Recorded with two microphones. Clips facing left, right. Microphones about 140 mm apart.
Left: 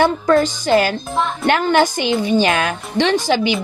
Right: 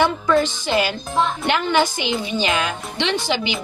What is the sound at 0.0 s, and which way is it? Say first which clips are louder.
Speech: left 3 dB; 45° left (ahead or behind).